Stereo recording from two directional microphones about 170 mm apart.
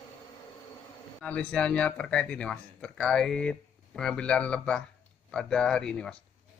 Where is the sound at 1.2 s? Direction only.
5° left (ahead or behind).